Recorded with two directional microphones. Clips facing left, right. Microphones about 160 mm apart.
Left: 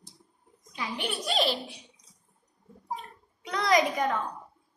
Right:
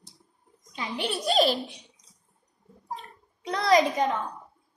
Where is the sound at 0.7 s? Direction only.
35° right (ahead or behind).